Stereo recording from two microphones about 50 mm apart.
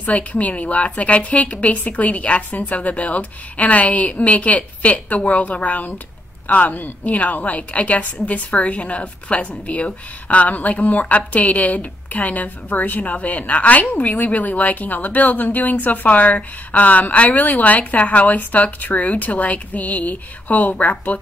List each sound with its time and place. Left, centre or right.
0.0 s a woman's voice: left